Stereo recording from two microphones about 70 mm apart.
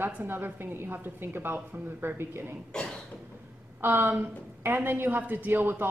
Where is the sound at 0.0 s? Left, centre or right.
Right.